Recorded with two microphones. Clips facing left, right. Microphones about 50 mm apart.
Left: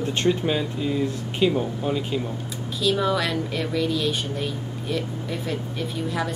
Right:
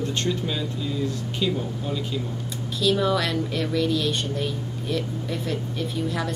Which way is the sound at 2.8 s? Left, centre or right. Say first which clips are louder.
Even; centre.